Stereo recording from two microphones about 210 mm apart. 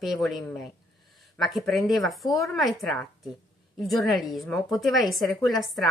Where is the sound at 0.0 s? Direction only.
Centre (ahead or behind).